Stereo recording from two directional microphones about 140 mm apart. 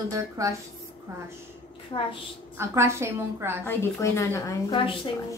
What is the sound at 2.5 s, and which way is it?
A woman's voice, 20° right (ahead or behind).